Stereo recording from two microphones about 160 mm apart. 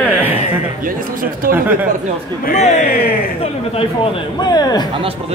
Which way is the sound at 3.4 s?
35° left (ahead or behind).